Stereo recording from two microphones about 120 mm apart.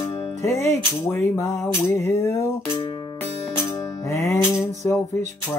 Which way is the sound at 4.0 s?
25° left (ahead or behind).